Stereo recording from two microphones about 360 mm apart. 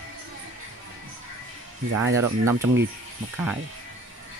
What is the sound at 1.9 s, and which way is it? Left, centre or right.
Speech, right.